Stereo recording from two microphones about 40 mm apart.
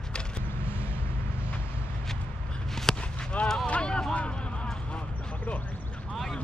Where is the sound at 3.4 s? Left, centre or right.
Left.